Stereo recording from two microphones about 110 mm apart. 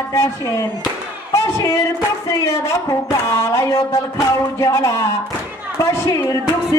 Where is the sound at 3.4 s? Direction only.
25° left (ahead or behind).